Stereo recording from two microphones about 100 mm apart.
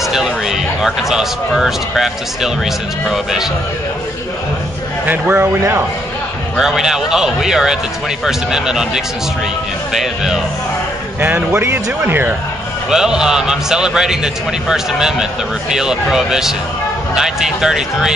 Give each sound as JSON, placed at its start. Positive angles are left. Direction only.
{"t": 0.0, "sound": "a man's voice", "side_deg": -5}
{"t": 5.0, "sound": "a man's voice", "side_deg": -15}
{"t": 6.5, "sound": "a man's voice", "side_deg": -5}
{"t": 11.1, "sound": "a man's voice", "side_deg": -20}
{"t": 12.9, "sound": "a man's voice", "side_deg": -5}